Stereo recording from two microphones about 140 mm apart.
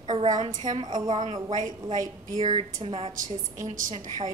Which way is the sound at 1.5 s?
65° right (ahead or behind).